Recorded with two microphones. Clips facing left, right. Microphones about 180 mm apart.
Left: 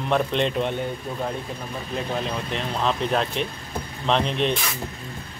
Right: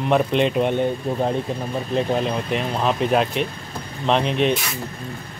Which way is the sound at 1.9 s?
15° right (ahead or behind).